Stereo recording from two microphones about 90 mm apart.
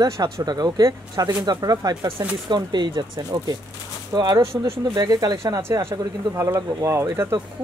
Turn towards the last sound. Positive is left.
turn(degrees=-30)  # may be behind; listen again after turning